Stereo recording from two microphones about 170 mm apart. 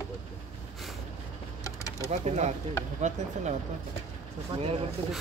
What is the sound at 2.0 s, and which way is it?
Speech, 40° right (ahead or behind).